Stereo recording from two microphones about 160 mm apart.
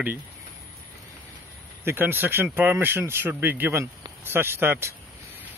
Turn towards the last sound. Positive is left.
turn(degrees=-15)  # may be behind; listen again after turning